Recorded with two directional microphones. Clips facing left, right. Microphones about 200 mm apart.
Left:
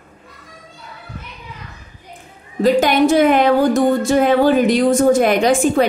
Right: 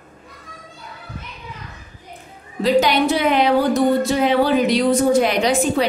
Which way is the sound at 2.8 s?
45° left (ahead or behind).